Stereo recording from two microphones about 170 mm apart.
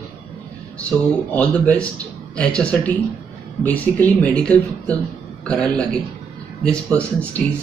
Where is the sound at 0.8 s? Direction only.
10° left (ahead or behind).